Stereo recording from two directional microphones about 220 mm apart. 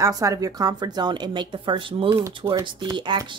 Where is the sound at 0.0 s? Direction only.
15° right (ahead or behind).